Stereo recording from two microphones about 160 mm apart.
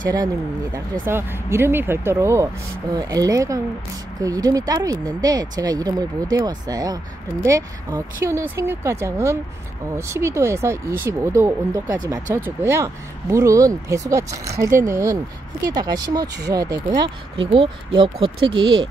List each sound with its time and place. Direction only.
1.0 s speech: 15° right (ahead or behind); by 18.9 s 30° right (ahead or behind)